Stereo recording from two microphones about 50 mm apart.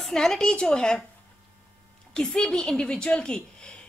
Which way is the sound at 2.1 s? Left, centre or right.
Centre.